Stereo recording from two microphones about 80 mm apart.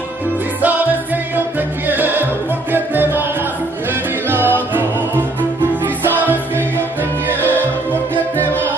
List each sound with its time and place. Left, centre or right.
0.6 s music: right
1.9 s music: right
4.3 s music: right
7.5 s music: left